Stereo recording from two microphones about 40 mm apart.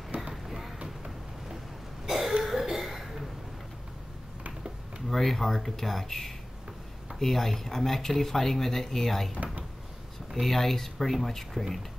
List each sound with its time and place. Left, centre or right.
0.3 s vehicle: centre
2.0 s a sound: centre
2.4 s cough: centre
4.5 s a sound: right
5.1 s speech: centre
10.4 s speech: centre